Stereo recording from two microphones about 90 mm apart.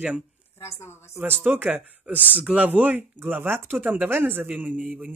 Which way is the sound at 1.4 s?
15° right (ahead or behind).